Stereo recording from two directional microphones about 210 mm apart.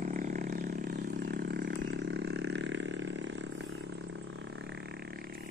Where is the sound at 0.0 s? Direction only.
40° right (ahead or behind).